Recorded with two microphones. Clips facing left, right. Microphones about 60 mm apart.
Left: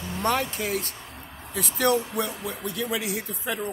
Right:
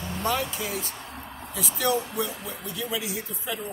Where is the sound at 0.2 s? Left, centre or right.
Left.